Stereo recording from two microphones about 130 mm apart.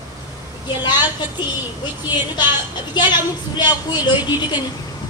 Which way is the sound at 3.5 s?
35° left (ahead or behind).